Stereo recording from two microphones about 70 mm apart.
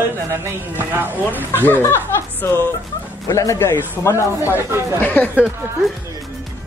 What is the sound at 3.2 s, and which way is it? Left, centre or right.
A man's voice, left.